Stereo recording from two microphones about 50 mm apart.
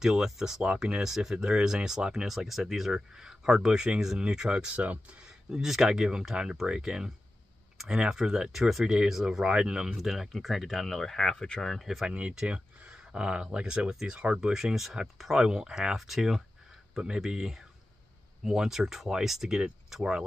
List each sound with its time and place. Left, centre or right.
0.0 s speech: centre
4.7 s speech: right
5.2 s speech: centre
7.7 s clicking: centre
8.0 s speech: centre
9.8 s speech: centre
12.4 s speech: right